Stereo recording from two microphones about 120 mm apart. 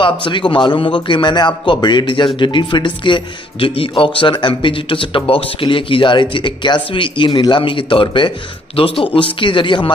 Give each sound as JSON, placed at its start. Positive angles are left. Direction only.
{"t": 0.0, "sound": "a man's voice", "side_deg": 45}